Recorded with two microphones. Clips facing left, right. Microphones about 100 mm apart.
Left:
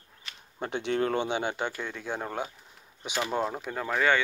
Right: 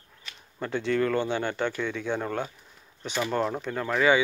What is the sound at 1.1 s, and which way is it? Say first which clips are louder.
Speech: right 2 dB; 20° left (ahead or behind).